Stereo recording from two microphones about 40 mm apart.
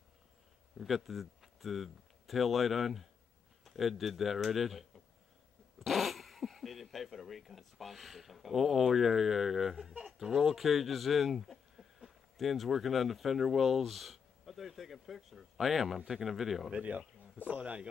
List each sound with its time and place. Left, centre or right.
0.7 s speech: centre
17.5 s a man's voice: right